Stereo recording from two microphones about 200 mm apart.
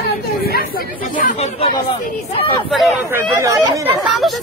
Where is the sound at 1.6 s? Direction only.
25° left (ahead or behind).